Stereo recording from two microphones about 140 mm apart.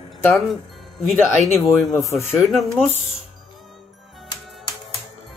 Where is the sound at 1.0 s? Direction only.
Centre (ahead or behind).